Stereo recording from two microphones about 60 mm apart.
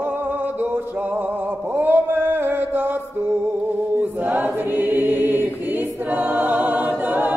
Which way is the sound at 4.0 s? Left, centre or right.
Right.